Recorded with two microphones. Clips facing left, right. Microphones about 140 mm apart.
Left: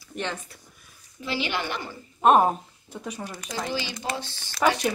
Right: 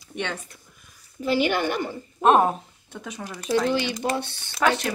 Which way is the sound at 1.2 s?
50° right (ahead or behind).